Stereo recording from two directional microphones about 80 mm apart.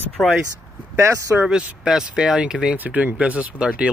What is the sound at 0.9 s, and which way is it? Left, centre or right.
Speech, right.